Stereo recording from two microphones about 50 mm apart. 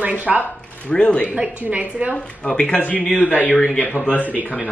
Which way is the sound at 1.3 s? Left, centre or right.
Right.